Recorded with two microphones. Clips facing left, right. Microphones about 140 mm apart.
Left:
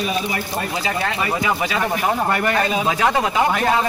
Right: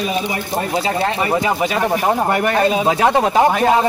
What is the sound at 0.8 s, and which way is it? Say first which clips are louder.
Speech: right 4 dB; 30° right (ahead or behind).